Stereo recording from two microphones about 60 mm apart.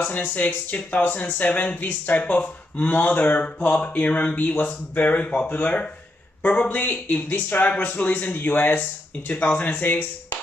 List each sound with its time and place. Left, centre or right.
0.0 s speech: left